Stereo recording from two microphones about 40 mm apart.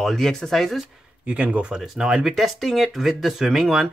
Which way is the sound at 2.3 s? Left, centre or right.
Centre.